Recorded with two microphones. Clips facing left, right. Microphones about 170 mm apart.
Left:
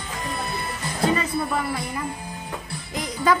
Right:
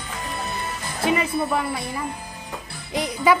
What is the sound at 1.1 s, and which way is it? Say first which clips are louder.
Speech: right 2 dB; 15° right (ahead or behind).